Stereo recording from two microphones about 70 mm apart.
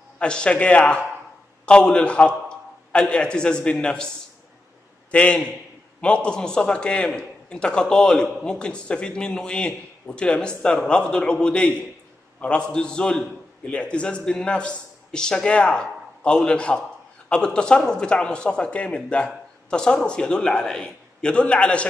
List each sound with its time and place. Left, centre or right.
0.2 s speech: centre
5.1 s a man's voice: centre